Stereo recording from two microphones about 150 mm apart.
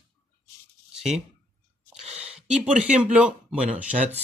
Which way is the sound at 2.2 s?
5° right (ahead or behind).